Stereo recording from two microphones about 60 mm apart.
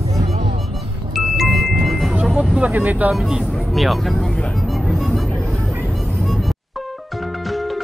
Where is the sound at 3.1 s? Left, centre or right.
Centre.